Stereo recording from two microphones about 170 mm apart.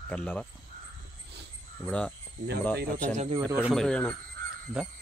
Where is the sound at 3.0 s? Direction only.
45° right (ahead or behind).